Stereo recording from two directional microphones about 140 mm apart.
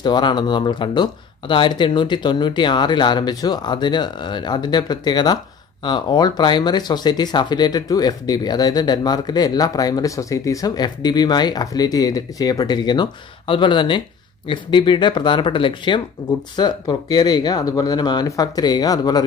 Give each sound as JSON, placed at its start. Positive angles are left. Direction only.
{"t": 0.0, "sound": "speech", "side_deg": 30}